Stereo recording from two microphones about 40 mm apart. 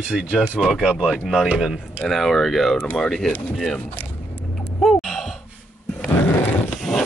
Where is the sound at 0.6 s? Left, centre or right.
Centre.